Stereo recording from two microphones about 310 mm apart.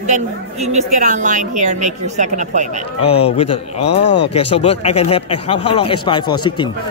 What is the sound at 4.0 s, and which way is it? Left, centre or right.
Speech, left.